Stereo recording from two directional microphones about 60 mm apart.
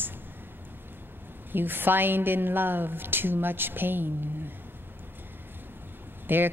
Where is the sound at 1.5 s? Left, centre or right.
Right.